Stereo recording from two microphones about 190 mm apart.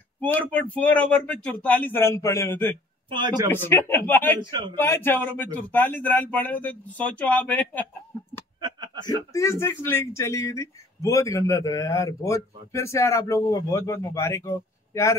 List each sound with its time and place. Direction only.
0.2 s speech: 10° left (ahead or behind)
3.1 s a man's voice: 25° right (ahead or behind)
3.4 s speech: 10° left (ahead or behind)
4.4 s a man's voice: 25° right (ahead or behind)
4.7 s speech: 15° left (ahead or behind)
8.5 s a sound: 20° right (ahead or behind)
9.3 s speech: 15° left (ahead or behind)